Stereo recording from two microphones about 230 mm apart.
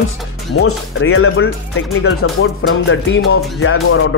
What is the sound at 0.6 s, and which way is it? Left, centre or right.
Speech, left.